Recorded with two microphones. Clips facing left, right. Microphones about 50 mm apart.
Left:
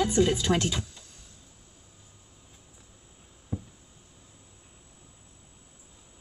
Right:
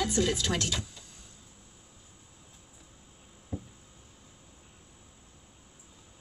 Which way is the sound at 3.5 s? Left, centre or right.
Centre.